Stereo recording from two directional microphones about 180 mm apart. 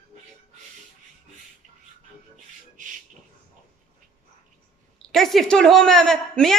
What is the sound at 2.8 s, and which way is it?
Beatboxing, 45° right (ahead or behind).